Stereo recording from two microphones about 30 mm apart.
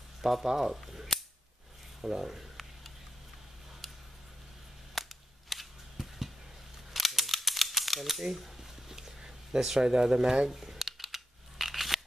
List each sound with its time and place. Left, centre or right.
0.2 s speech: centre
2.1 s speech: centre
3.8 s tick: centre
5.0 s cap gun: centre
5.5 s scissors: centre
6.9 s a sound: centre
9.8 s speech: centre
10.5 s a sound: centre